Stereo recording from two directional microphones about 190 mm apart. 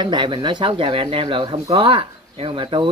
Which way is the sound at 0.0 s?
25° right (ahead or behind).